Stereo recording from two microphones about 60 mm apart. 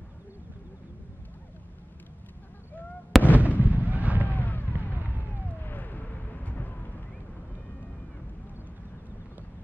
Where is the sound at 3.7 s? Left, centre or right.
Right.